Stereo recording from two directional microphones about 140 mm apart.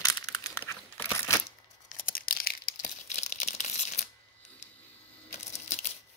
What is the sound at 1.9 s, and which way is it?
Tearing, 90° left.